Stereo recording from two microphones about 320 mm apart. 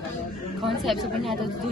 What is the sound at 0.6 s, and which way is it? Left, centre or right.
Speech, centre.